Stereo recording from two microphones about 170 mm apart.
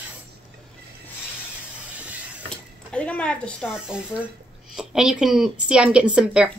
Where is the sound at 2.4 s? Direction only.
5° left (ahead or behind).